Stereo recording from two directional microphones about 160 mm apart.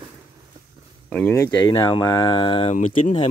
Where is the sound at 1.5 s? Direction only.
25° left (ahead or behind).